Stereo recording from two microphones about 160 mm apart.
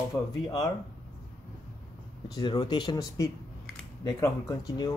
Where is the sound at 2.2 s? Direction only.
25° left (ahead or behind).